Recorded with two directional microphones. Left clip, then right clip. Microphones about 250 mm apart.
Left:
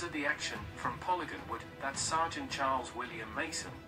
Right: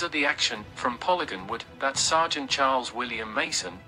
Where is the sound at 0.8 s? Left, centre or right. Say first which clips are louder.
Right 9 dB; right.